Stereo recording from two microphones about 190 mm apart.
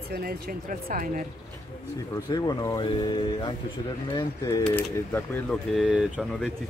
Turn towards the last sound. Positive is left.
turn(degrees=0)  # may be behind; listen again after turning